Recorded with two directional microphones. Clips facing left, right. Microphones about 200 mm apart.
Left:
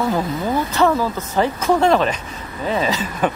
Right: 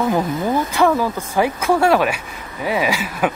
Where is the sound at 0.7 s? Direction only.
10° right (ahead or behind).